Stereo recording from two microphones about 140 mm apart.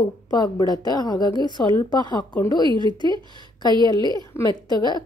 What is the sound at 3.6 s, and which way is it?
A woman's voice, 30° left (ahead or behind).